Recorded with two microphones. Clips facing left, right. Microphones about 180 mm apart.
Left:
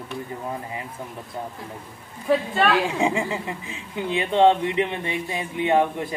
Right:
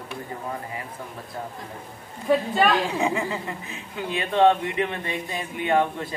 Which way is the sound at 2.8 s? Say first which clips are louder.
Left 2 dB; 25° left (ahead or behind).